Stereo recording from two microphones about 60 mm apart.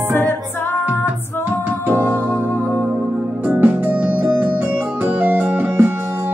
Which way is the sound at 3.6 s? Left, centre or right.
Right.